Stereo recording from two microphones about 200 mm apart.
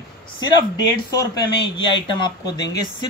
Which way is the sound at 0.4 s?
20° left (ahead or behind).